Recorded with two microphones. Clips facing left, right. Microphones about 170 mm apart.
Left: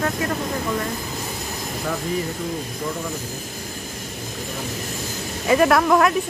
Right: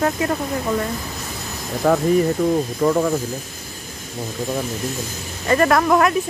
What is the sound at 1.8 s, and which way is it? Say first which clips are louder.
Speech: right 10 dB; 70° right (ahead or behind).